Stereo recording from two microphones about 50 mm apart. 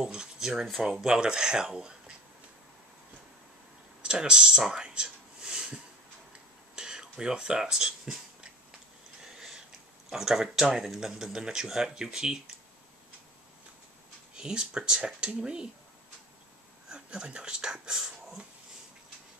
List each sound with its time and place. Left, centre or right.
0.0 s speech: centre
4.0 s a sound: centre
6.7 s a sound: centre
10.0 s speech: centre
14.3 s speech: centre
16.9 s speech: centre